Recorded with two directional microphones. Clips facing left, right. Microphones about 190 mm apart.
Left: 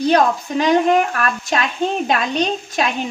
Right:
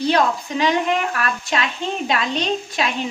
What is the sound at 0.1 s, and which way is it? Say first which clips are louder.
A woman's voice: left 4 dB; 45° left (ahead or behind).